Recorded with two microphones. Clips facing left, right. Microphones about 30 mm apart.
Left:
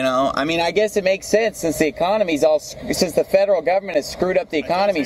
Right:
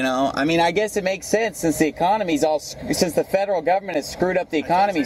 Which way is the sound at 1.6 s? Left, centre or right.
Left.